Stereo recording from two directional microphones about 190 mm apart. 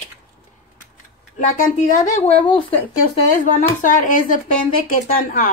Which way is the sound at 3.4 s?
45° left (ahead or behind).